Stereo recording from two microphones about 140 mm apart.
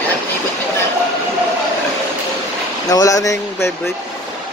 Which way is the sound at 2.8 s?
25° left (ahead or behind).